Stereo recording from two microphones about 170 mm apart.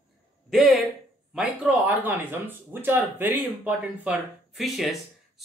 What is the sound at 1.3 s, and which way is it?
Speech, 5° right (ahead or behind).